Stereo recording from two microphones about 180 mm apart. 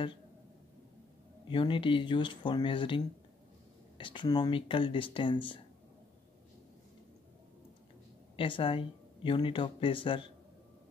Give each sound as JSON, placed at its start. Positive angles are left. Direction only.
{"t": 1.5, "sound": "speech", "side_deg": 30}
{"t": 4.0, "sound": "speech", "side_deg": 25}
{"t": 8.4, "sound": "speech", "side_deg": 30}